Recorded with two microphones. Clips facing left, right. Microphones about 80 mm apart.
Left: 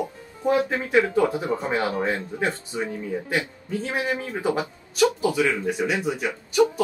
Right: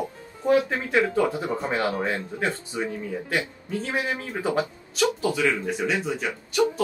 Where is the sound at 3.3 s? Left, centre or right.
Centre.